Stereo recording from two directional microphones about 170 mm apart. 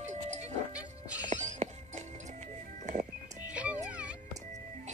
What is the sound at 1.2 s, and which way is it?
Music, 45° right (ahead or behind).